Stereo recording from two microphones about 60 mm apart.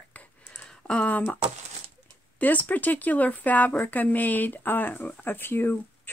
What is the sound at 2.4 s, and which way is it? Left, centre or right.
Speech, left.